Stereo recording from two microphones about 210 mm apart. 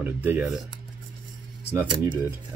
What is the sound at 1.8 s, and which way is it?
Speech, 20° right (ahead or behind).